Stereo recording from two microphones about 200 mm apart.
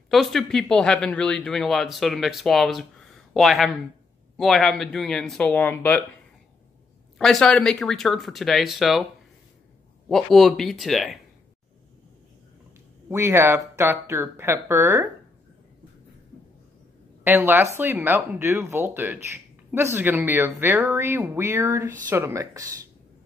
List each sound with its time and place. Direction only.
0.1 s speech: centre (ahead or behind)
7.2 s speech: centre (ahead or behind)
10.0 s speech: centre (ahead or behind)
13.1 s speech: 10° right (ahead or behind)
17.2 s speech: 10° right (ahead or behind)